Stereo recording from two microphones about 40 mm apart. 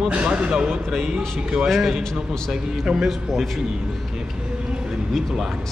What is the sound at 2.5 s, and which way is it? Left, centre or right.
Speech, centre.